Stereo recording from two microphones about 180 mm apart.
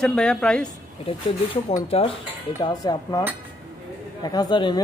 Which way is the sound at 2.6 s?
20° left (ahead or behind).